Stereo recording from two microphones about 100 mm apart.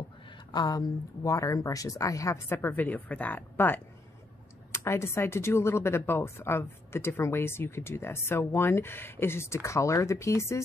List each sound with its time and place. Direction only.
0.5 s speech: 40° left (ahead or behind)